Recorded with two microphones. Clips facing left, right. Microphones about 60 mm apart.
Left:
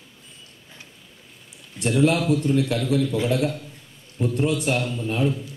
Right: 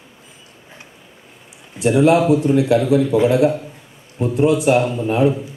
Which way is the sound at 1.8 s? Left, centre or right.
Centre.